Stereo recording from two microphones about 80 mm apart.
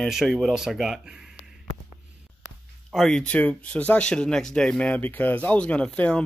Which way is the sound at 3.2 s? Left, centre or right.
Centre.